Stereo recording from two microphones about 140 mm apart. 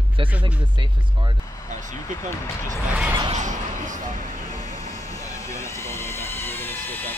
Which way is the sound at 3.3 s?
60° right (ahead or behind).